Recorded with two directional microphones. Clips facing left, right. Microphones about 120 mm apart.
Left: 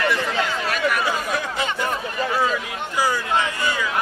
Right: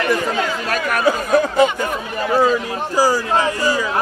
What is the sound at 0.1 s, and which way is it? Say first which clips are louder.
Chatter: right 4 dB; 45° right (ahead or behind).